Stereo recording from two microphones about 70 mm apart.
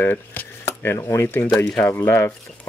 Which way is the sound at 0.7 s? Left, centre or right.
Left.